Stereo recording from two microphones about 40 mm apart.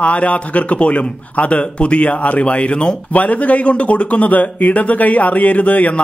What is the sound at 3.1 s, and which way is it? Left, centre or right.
A man's voice, left.